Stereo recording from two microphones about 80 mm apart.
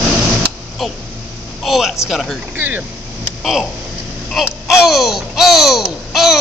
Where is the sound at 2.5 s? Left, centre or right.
Right.